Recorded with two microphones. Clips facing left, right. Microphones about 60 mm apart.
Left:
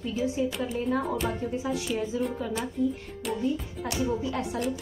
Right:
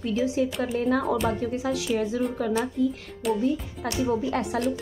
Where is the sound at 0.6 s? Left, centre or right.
Right.